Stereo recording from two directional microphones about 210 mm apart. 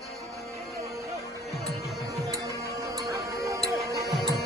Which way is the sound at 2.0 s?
15° right (ahead or behind).